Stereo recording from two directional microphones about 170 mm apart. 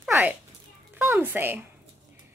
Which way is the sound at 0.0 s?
10° right (ahead or behind).